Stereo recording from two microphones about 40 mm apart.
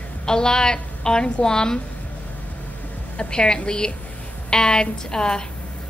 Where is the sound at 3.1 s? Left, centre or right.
Left.